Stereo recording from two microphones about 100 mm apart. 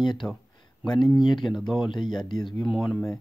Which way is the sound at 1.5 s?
Centre (ahead or behind).